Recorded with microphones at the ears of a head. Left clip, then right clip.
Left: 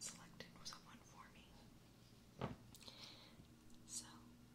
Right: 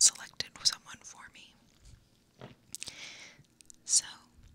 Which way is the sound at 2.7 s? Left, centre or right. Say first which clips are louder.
Right 14 dB; right.